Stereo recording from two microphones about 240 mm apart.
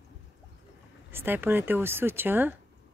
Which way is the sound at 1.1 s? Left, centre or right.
Centre.